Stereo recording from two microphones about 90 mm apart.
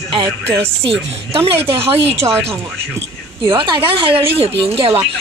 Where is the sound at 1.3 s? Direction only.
90° right.